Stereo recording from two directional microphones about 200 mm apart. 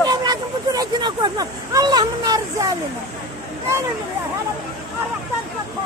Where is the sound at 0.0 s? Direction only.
20° right (ahead or behind).